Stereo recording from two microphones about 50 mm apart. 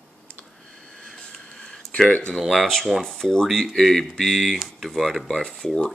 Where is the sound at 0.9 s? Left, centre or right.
Centre.